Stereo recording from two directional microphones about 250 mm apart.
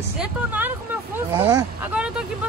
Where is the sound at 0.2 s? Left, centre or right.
Centre.